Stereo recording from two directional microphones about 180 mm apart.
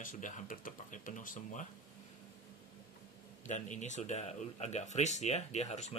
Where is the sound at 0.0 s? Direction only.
45° left (ahead or behind).